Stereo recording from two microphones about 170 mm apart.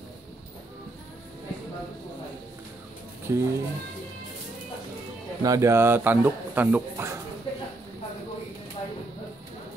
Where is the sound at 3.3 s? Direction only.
15° right (ahead or behind).